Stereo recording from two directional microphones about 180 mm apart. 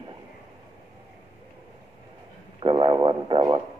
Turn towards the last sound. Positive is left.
turn(degrees=-25)  # may be behind; listen again after turning